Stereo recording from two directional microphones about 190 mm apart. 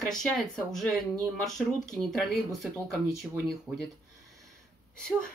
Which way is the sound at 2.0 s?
Centre (ahead or behind).